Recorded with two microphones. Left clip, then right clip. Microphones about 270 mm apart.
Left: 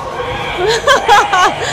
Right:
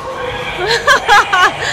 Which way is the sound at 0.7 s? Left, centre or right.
Centre.